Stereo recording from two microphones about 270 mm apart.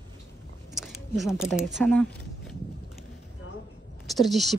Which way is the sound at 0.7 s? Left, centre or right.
Centre.